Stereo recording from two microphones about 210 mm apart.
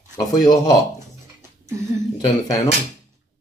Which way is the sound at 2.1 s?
15° left (ahead or behind).